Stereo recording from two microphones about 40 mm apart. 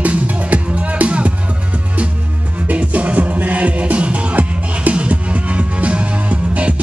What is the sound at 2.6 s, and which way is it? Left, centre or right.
Music, right.